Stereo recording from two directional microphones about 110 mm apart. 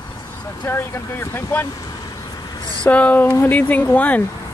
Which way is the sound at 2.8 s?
15° left (ahead or behind).